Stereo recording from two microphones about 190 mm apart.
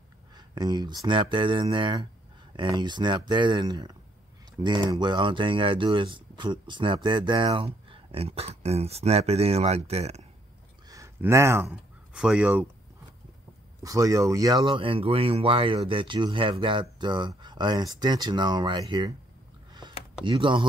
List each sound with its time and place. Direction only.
0.6 s speech: 20° right (ahead or behind)
10.9 s speech: 15° right (ahead or behind)
13.8 s speech: 15° right (ahead or behind)
19.8 s a sound: 25° right (ahead or behind)
20.2 s speech: 25° right (ahead or behind)